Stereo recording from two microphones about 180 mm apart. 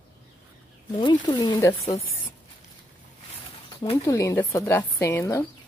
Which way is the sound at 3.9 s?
15° left (ahead or behind).